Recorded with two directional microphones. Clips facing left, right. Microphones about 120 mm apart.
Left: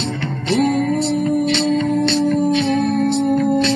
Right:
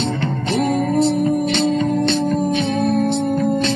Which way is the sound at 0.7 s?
45° right (ahead or behind).